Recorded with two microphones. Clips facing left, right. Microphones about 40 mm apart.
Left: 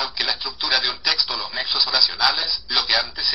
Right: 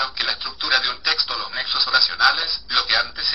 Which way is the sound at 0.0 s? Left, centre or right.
Centre.